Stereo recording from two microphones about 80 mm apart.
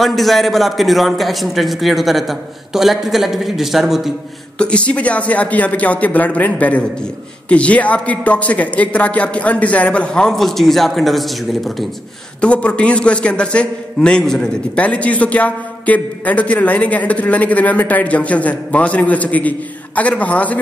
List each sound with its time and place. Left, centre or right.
0.0 s a man's voice: centre
4.6 s a man's voice: centre
12.4 s a man's voice: centre